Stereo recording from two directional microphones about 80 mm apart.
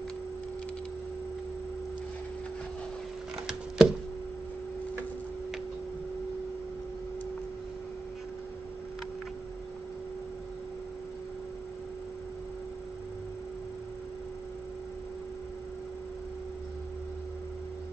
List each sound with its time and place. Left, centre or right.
3.4 s chopping: centre